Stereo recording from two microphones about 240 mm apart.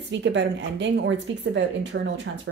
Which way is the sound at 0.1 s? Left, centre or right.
Right.